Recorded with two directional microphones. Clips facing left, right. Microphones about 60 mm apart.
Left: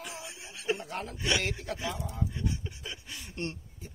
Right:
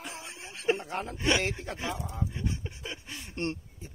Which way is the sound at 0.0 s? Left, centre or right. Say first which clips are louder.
Right 1 dB; right.